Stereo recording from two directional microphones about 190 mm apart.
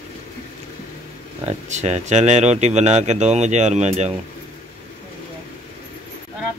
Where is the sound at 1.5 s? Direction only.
35° right (ahead or behind).